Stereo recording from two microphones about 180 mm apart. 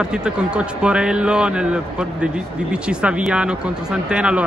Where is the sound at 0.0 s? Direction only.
5° right (ahead or behind).